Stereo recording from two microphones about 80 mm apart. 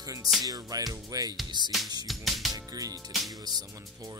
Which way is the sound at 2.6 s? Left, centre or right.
Right.